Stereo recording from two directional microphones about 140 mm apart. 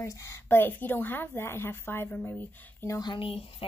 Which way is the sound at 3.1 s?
40° left (ahead or behind).